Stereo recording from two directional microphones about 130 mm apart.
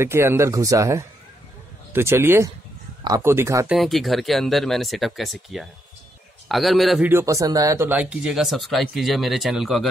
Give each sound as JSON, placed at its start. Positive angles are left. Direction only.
{"t": 0.0, "sound": "speech", "side_deg": -20}
{"t": 3.6, "sound": "speech", "side_deg": 0}
{"t": 7.1, "sound": "speech", "side_deg": -20}